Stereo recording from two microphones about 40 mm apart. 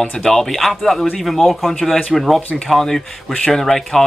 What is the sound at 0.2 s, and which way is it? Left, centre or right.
Speech, centre.